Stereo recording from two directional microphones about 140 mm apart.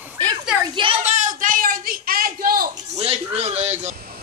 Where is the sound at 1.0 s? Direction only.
60° right (ahead or behind); by 2.7 s 90° right.